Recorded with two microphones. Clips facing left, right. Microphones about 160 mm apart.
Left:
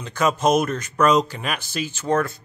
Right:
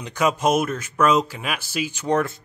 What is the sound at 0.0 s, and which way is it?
Speech, 10° right (ahead or behind).